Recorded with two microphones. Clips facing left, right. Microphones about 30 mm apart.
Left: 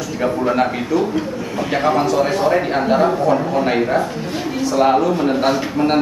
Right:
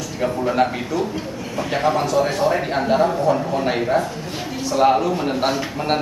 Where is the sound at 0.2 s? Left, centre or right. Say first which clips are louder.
Left 2 dB; centre.